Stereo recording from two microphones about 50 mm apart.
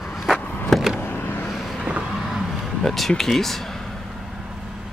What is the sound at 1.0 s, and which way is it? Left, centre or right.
Vehicle, left.